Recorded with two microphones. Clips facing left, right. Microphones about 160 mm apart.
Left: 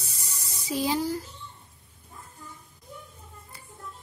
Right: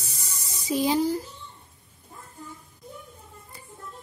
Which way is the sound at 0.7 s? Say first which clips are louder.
Right 4 dB; 20° right (ahead or behind).